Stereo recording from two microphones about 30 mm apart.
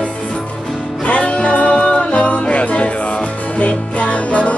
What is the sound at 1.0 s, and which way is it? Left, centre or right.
Music, left.